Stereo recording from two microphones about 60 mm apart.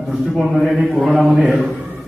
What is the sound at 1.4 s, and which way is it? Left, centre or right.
Speech, centre.